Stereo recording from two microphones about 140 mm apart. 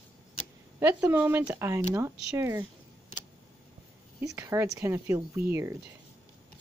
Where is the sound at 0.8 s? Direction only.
15° right (ahead or behind).